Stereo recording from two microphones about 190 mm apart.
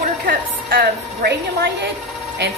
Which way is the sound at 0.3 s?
50° right (ahead or behind).